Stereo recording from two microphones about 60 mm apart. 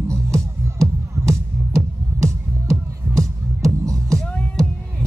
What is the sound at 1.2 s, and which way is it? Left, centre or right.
Music, right.